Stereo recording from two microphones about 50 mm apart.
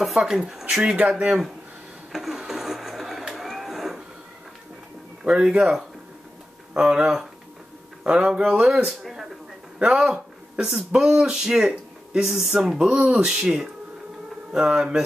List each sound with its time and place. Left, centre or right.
0.0 s speech: centre
2.1 s printer: centre
3.3 s a sound: centre
5.2 s speech: centre
9.8 s speech: centre